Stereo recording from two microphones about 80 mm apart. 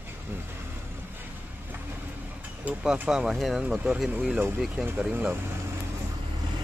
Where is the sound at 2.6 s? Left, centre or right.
Centre.